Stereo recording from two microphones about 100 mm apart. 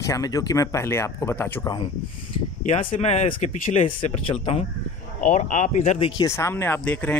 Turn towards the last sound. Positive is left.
turn(degrees=10)  # may be behind; listen again after turning